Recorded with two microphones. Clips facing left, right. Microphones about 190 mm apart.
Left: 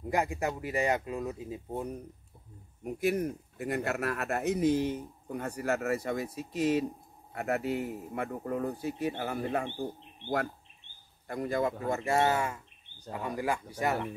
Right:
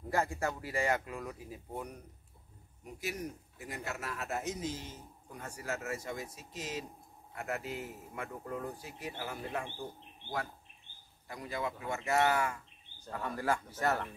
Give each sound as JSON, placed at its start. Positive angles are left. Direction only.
{"t": 0.0, "sound": "speech", "side_deg": 15}
{"t": 2.8, "sound": "speech", "side_deg": 55}
{"t": 11.2, "sound": "a man's voice", "side_deg": 50}